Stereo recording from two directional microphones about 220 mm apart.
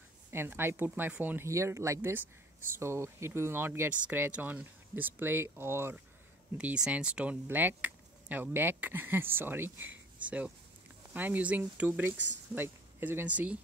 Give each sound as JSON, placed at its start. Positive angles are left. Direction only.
{"t": 0.3, "sound": "speech", "side_deg": -10}